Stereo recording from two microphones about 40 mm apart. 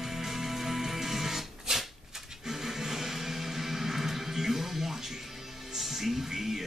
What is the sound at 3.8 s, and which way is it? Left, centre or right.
Music, centre.